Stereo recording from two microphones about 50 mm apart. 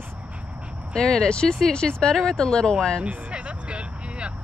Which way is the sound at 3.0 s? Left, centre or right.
Right.